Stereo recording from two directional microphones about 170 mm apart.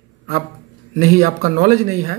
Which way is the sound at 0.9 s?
45° right (ahead or behind).